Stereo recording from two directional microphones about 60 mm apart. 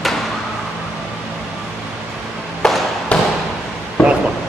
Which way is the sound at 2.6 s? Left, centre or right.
Centre.